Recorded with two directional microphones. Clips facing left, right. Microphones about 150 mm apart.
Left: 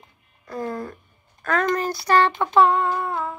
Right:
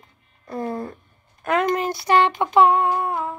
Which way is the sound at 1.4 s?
20° right (ahead or behind).